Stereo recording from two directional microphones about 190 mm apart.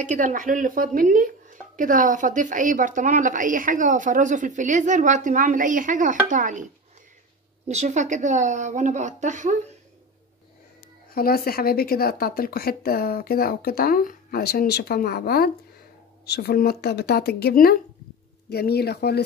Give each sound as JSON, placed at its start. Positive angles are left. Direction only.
{"t": 0.0, "sound": "a woman's voice", "side_deg": -40}
{"t": 7.6, "sound": "a woman's voice", "side_deg": -35}
{"t": 11.1, "sound": "speech", "side_deg": 50}